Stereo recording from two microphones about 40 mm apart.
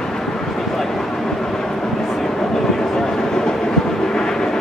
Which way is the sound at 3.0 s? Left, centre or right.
Centre.